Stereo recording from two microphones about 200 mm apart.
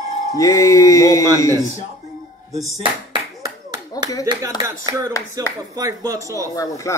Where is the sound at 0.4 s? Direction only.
15° left (ahead or behind).